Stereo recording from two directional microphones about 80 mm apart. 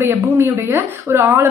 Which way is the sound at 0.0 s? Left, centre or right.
Right.